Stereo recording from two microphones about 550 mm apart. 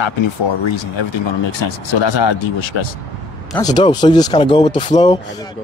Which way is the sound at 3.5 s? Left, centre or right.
Centre.